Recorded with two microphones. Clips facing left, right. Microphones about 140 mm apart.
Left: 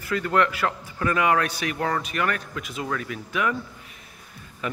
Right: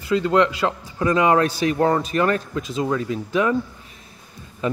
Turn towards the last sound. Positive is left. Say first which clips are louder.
# right 7 dB
turn(degrees=-30)  # may be behind; listen again after turning